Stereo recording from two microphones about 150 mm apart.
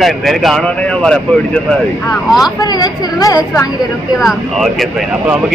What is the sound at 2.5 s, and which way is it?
Speech, 25° left (ahead or behind).